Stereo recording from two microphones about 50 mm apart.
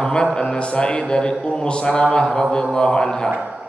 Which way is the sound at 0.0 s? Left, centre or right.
Centre.